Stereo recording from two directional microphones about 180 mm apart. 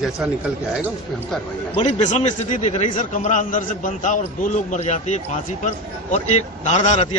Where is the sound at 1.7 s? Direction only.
40° left (ahead or behind).